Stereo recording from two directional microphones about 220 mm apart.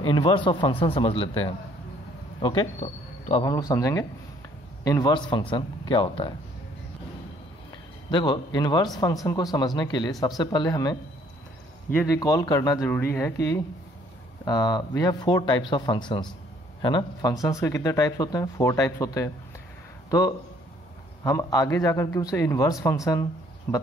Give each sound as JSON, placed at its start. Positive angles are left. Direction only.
{"t": 0.0, "sound": "speech", "side_deg": 20}
{"t": 3.4, "sound": "speech", "side_deg": 15}
{"t": 8.1, "sound": "speech", "side_deg": 20}